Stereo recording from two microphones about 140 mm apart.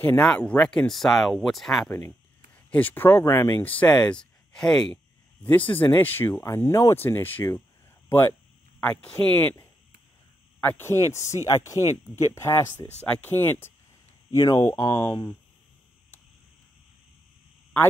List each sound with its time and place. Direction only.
0.2 s speech: 5° left (ahead or behind)
2.0 s speech: 15° left (ahead or behind)
4.1 s speech: 5° left (ahead or behind)